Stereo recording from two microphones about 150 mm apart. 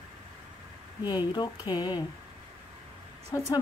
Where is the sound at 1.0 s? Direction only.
30° left (ahead or behind).